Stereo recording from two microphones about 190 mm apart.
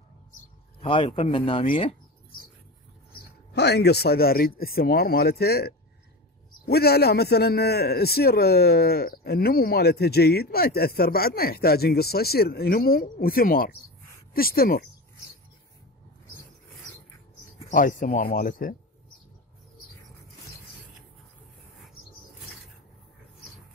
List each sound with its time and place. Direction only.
0.7 s speech: 25° left (ahead or behind)
3.1 s a man's voice: 55° left (ahead or behind)
17.6 s speech: 45° left (ahead or behind)